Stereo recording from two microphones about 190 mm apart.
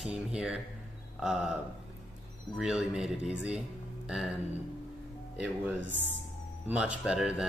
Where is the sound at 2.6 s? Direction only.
5° right (ahead or behind).